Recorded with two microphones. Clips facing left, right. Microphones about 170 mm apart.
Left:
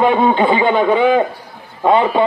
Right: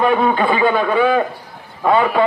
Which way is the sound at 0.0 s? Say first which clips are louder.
Left 2 dB; 25° left (ahead or behind).